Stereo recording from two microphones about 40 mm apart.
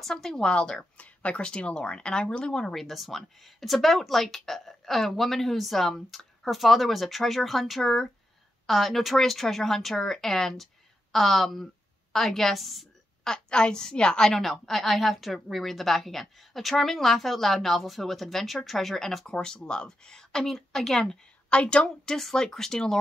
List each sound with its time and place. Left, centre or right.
0.0 s speech: centre
0.5 s speech: left
0.9 s speech: left; by 2.7 s centre
2.7 s speech: centre
13.2 s speech: centre
14.3 s speech: centre
21.5 s a woman's voice: left
21.8 s speech: centre